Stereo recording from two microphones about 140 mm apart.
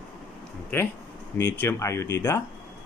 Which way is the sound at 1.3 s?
15° left (ahead or behind).